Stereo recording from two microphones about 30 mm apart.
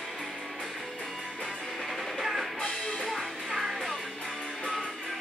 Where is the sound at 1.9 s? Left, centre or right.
Centre.